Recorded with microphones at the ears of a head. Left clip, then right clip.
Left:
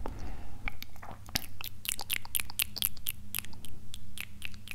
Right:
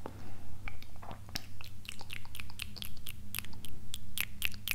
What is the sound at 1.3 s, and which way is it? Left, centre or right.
Biting, left.